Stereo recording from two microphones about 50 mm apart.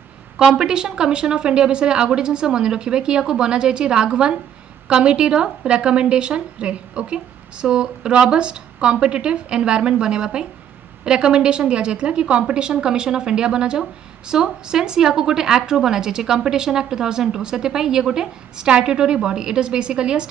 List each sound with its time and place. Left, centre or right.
0.4 s a woman's voice: centre